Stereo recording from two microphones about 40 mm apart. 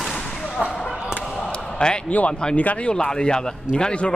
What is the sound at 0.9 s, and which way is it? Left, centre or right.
Basketball bounce, centre.